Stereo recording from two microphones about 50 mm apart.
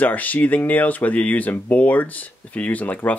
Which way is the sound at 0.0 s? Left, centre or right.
Left.